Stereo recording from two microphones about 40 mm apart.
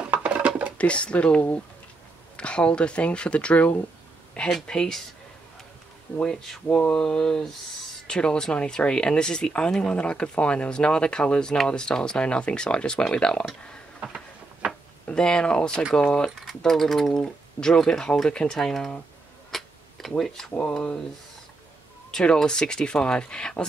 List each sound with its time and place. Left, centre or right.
0.0 s dishes: right
0.7 s speech: left
4.6 s speech: centre
6.2 s speech: centre
14.6 s a sound: right
15.0 s speech: left
16.6 s speech: centre
18.6 s speech: centre
19.5 s tick-tock: centre
20.5 s speech: left
22.1 s speech: centre